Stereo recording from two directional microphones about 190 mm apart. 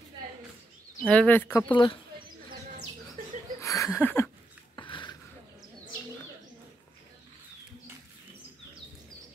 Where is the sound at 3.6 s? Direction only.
15° left (ahead or behind).